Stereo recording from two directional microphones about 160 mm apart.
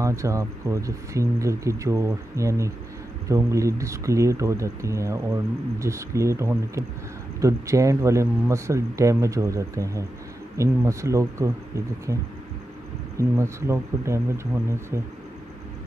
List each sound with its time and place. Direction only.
0.0 s speech: 20° right (ahead or behind)
13.2 s speech: 15° right (ahead or behind)